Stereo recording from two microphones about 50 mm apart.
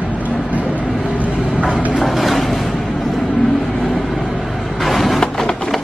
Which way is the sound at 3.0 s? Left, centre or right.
Centre.